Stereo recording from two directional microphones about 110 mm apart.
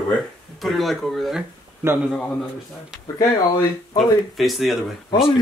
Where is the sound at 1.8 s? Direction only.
25° right (ahead or behind).